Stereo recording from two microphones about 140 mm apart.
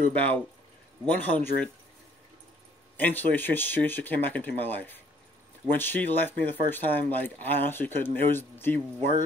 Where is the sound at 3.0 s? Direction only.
15° left (ahead or behind).